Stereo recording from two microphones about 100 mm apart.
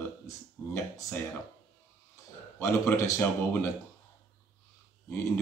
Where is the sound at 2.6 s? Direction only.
30° left (ahead or behind).